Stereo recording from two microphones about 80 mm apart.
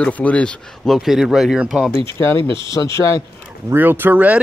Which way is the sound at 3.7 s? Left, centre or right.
Right.